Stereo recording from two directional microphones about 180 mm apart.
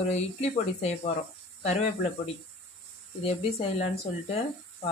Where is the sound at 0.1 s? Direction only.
35° left (ahead or behind).